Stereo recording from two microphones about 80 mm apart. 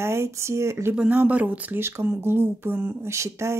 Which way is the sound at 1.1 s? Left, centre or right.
Right.